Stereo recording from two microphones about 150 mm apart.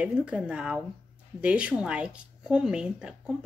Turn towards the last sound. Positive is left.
turn(degrees=-5)  # may be behind; listen again after turning